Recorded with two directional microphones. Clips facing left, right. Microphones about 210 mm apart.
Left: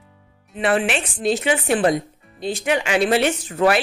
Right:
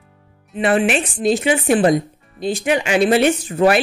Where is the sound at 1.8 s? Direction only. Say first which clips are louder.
Right 4 dB; 40° right (ahead or behind).